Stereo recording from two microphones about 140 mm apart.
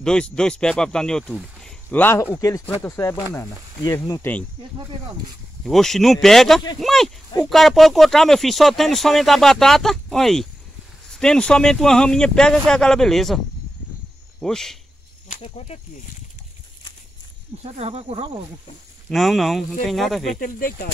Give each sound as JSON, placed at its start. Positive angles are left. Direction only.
{"t": 0.0, "sound": "speech", "side_deg": 5}
{"t": 2.1, "sound": "speech", "side_deg": 25}
{"t": 5.6, "sound": "speech", "side_deg": 5}
{"t": 14.4, "sound": "speech", "side_deg": 5}
{"t": 15.3, "sound": "speech", "side_deg": 45}
{"t": 17.6, "sound": "speech", "side_deg": -50}
{"t": 19.0, "sound": "speech", "side_deg": 0}
{"t": 20.3, "sound": "speech", "side_deg": 80}